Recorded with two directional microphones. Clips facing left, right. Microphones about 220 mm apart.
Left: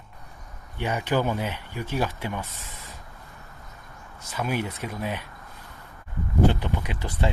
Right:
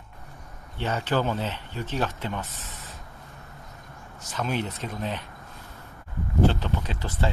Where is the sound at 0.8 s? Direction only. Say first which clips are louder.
Left 1 dB; 15° left (ahead or behind).